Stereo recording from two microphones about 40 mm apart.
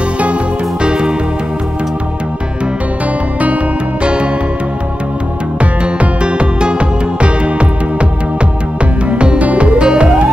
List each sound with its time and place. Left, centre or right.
0.8 s music: right
4.0 s music: right
5.6 s music: right
9.4 s music: right